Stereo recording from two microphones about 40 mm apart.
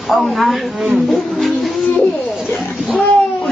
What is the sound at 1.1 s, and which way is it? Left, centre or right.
Music, centre.